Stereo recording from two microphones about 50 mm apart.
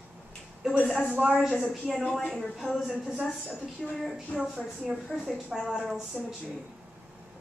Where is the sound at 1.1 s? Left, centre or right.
Right.